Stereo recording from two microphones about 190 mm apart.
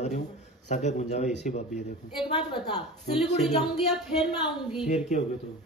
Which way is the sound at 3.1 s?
35° left (ahead or behind).